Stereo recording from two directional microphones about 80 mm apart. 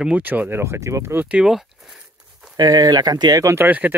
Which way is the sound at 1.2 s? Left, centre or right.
Centre.